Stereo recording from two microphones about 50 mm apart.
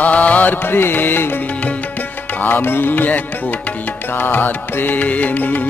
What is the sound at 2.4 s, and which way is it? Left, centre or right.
Music, left.